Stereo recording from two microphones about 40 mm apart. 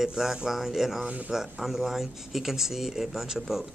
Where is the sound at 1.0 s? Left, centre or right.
Right.